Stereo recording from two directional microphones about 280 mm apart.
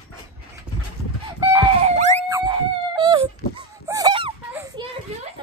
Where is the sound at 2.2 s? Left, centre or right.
Centre.